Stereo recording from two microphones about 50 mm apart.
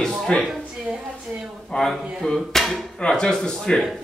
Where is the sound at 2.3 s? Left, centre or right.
Centre.